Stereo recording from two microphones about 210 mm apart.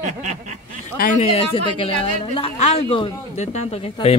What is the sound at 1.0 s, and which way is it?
A man's voice, 35° left (ahead or behind).